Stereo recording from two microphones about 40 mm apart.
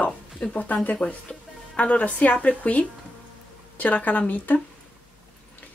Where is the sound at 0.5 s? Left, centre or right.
Left.